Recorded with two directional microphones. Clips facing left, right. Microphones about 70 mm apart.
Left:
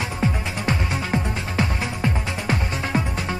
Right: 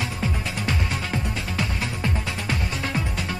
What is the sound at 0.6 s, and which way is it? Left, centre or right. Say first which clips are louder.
Music: left 4 dB; left.